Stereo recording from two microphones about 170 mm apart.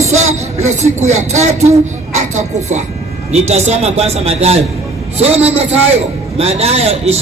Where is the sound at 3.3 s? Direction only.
40° right (ahead or behind).